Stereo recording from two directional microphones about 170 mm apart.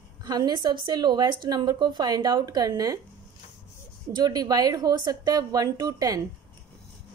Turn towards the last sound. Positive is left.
turn(degrees=-20)  # may be behind; listen again after turning